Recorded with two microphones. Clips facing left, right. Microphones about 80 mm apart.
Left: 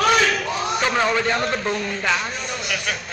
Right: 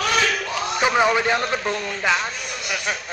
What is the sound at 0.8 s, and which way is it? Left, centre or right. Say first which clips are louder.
Speech: right 3 dB; centre.